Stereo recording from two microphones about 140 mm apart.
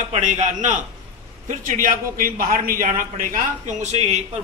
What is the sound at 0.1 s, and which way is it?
Speech, 60° right (ahead or behind).